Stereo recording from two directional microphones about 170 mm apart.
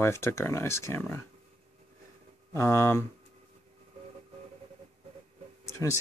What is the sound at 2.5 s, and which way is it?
Speech, 15° left (ahead or behind).